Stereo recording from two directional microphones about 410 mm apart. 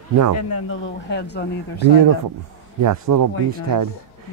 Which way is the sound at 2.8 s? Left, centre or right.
Right.